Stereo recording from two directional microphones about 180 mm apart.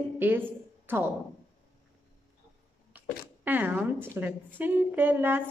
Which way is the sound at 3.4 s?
10° right (ahead or behind).